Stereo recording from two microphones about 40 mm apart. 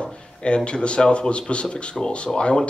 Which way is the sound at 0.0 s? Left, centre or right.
Left.